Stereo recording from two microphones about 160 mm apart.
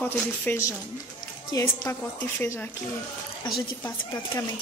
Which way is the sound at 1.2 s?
20° left (ahead or behind).